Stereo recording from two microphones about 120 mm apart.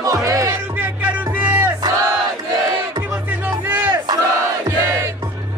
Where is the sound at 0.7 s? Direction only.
15° right (ahead or behind).